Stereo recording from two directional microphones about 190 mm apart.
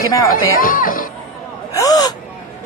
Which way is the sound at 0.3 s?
45° left (ahead or behind).